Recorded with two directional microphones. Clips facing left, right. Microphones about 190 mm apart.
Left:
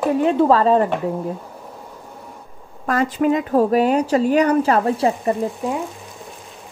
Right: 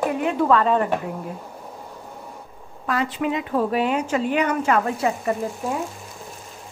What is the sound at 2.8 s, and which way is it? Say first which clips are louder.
Speech: left 6 dB; 45° left (ahead or behind).